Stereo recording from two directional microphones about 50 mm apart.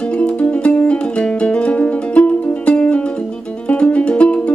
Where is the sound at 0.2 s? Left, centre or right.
Left.